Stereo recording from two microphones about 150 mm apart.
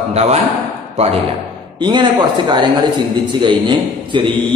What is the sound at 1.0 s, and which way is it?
Speech, 45° right (ahead or behind).